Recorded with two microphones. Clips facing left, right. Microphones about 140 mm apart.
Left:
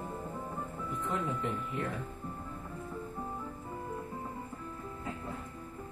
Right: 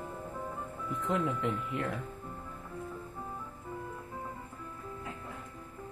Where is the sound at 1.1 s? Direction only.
90° right.